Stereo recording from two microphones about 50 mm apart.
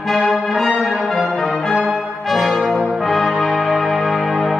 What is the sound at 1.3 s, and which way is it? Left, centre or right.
Music, centre.